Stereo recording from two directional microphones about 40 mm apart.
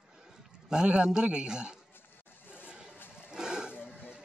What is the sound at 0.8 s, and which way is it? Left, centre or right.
Speech, right.